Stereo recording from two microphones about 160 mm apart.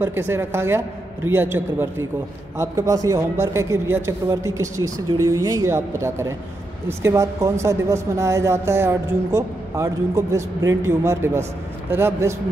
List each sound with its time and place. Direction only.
0.0 s a woman's voice: 15° right (ahead or behind)